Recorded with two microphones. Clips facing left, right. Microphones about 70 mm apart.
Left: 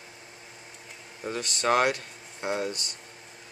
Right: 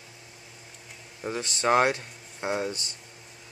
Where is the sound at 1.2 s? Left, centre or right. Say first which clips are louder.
Right 1 dB; right.